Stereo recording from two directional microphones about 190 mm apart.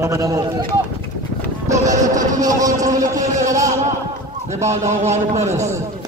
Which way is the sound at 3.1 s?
40° right (ahead or behind).